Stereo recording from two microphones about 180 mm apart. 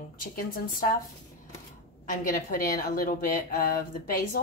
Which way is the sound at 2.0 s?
50° left (ahead or behind).